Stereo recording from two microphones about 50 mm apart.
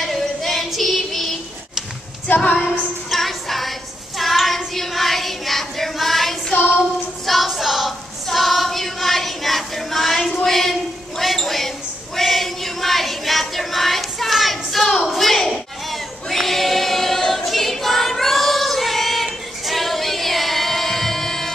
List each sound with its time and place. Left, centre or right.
0.0 s female singing: centre
2.2 s a sound: left
2.6 s music: centre
4.2 s child singing: centre
10.4 s a sound: centre
15.1 s choir: centre